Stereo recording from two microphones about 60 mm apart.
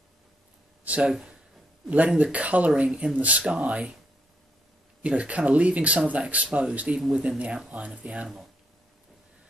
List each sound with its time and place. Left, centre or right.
0.8 s a sound: right
2.1 s speech: right
5.0 s speech: right